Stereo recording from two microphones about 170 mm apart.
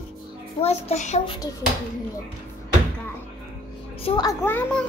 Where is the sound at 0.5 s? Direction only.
35° left (ahead or behind).